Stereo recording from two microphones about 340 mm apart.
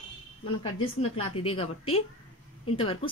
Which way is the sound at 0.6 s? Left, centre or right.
Centre.